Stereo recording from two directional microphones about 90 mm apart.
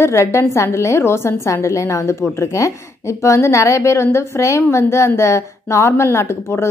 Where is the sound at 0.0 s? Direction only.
30° left (ahead or behind).